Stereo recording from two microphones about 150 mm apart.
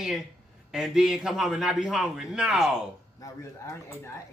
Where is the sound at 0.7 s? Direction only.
5° right (ahead or behind).